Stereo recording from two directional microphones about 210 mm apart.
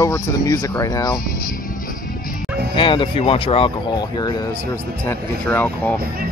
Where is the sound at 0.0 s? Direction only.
15° left (ahead or behind).